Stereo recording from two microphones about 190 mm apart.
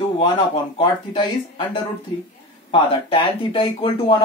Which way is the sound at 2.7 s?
25° left (ahead or behind).